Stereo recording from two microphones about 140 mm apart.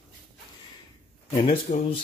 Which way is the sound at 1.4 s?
45° left (ahead or behind).